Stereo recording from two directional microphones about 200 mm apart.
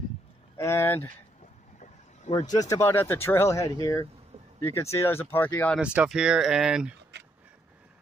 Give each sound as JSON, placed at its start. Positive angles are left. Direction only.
{"t": 0.6, "sound": "speech", "side_deg": 15}
{"t": 1.8, "sound": "vehicle", "side_deg": 35}
{"t": 2.5, "sound": "speech", "side_deg": 15}
{"t": 5.8, "sound": "speech", "side_deg": -5}